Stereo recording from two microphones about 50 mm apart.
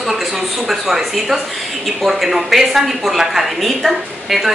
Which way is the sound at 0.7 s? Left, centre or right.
Centre.